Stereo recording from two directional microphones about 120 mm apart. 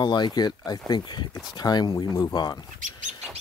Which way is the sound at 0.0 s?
40° left (ahead or behind).